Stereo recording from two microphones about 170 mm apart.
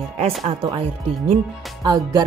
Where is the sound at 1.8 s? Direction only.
25° right (ahead or behind).